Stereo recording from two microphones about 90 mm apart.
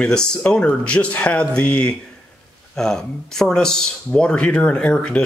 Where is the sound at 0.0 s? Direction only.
10° left (ahead or behind).